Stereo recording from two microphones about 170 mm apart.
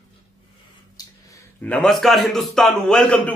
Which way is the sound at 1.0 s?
25° left (ahead or behind).